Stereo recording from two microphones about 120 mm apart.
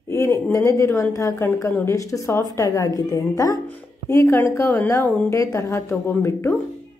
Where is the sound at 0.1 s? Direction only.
25° left (ahead or behind).